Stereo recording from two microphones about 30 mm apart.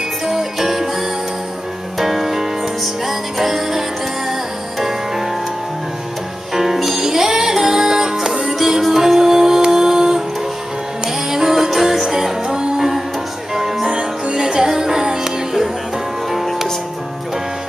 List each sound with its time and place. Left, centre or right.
0.3 s jingle bell: centre
2.0 s music: centre
6.5 s music: centre
13.8 s music: right